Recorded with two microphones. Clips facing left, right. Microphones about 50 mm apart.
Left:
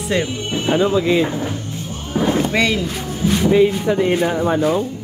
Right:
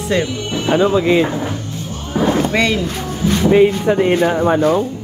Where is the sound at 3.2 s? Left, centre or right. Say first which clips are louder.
Right 2 dB; right.